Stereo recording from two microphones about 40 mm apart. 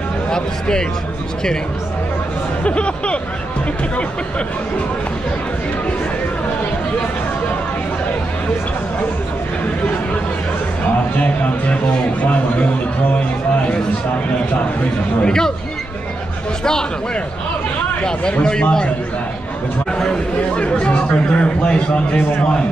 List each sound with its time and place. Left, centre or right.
0.3 s speech: centre
2.6 s a man's voice: left
11.1 s speech: left
15.2 s speech: centre
18.4 s a man's voice: left
19.9 s speech: centre
20.5 s a man's voice: left